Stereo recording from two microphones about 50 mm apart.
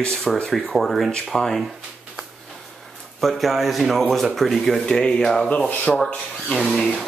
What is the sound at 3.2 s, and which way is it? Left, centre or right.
Speech, centre.